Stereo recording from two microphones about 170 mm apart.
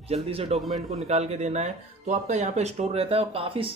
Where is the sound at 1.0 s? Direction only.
40° right (ahead or behind).